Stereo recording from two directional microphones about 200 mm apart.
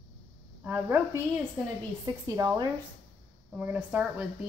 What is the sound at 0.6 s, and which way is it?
Speech, 10° right (ahead or behind).